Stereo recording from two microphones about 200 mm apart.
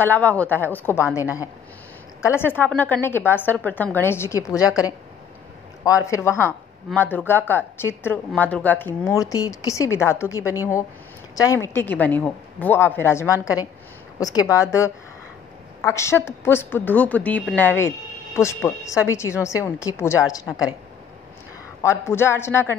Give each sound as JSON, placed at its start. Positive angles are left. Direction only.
{"t": 0.0, "sound": "a woman's voice", "side_deg": 10}
{"t": 2.2, "sound": "a woman's voice", "side_deg": 10}
{"t": 4.6, "sound": "a woman's voice", "side_deg": -5}
{"t": 5.9, "sound": "a woman's voice", "side_deg": 15}
{"t": 21.8, "sound": "a woman's voice", "side_deg": 10}